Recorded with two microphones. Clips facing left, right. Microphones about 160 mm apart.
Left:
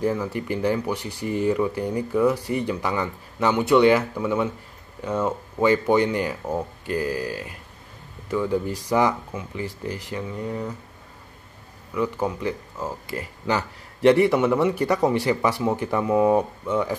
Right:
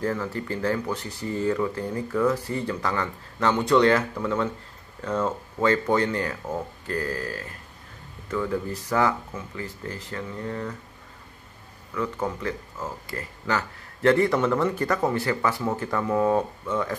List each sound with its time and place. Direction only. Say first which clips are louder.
0.0 s speech: left 3 dB; 15° left (ahead or behind)
11.9 s speech: left 3 dB; 15° left (ahead or behind)